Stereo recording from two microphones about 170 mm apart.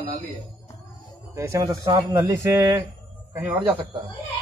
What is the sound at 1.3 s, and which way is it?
Speech, 15° right (ahead or behind).